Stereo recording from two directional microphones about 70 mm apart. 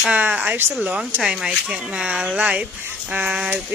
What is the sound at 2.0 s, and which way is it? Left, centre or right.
Speech, centre.